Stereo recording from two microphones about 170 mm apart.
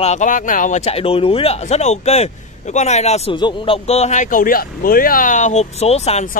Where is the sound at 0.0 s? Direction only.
45° left (ahead or behind).